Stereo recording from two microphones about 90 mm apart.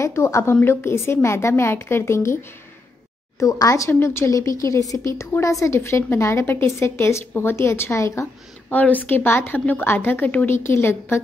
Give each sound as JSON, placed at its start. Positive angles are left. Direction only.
{"t": 0.0, "sound": "a woman's voice", "side_deg": 30}
{"t": 3.3, "sound": "a woman's voice", "side_deg": 40}
{"t": 8.7, "sound": "a woman's voice", "side_deg": 20}